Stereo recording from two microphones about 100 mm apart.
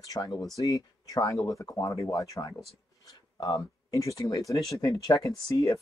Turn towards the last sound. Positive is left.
turn(degrees=35)  # may be behind; listen again after turning